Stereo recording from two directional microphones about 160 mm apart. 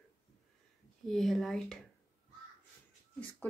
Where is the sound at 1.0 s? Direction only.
Centre (ahead or behind).